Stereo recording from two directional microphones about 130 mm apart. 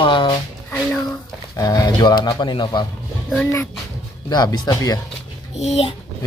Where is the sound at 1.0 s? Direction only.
25° left (ahead or behind).